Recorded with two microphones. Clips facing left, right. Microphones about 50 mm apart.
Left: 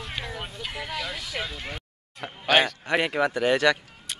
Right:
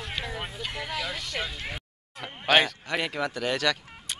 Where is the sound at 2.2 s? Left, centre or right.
Centre.